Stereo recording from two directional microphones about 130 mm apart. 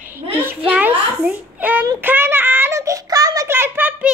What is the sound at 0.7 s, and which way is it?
A child's voice, 10° right (ahead or behind).